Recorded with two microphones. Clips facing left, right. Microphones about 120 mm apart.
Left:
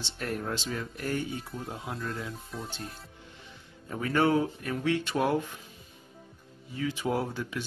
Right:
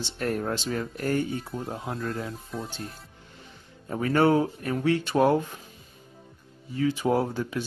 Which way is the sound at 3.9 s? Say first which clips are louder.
Right 4 dB; 40° right (ahead or behind).